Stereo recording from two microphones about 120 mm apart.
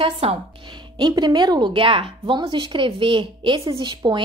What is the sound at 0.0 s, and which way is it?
A woman's voice, 50° right (ahead or behind).